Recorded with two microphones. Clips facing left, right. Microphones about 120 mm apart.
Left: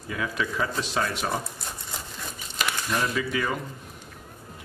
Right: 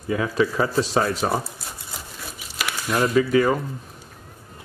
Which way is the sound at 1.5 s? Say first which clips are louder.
Even; 5° right (ahead or behind).